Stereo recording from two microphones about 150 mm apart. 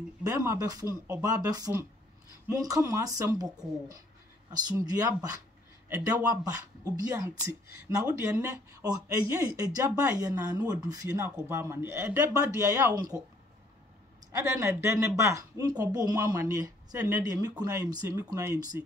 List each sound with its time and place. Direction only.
0.2 s speech: 25° right (ahead or behind)
6.4 s speech: 25° right (ahead or behind)
14.6 s speech: 20° right (ahead or behind)